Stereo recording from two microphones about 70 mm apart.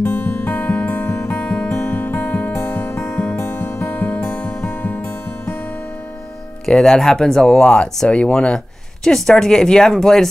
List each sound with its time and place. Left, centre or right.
0.0 s music: left
6.6 s speech: centre